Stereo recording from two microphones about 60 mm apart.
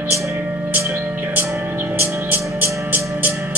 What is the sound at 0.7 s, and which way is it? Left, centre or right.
Music, right.